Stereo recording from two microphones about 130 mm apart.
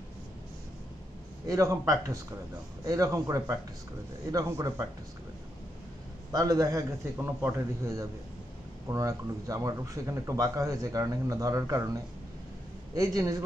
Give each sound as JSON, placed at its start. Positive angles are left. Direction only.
{"t": 1.5, "sound": "speech", "side_deg": -25}
{"t": 6.3, "sound": "speech", "side_deg": -25}